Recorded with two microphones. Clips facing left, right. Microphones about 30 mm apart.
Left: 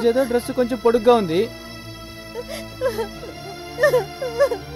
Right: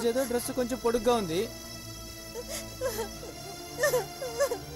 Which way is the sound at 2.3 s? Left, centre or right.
Left.